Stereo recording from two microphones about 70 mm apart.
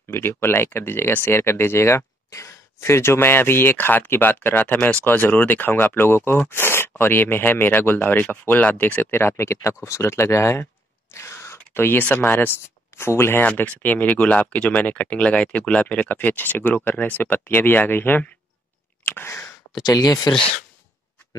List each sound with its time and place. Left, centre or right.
0.1 s speech: left
13.6 s speech: left
19.0 s a sound: left
19.9 s speech: left